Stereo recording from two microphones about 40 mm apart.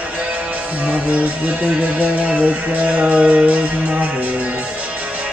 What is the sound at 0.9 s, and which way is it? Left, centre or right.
Music, right.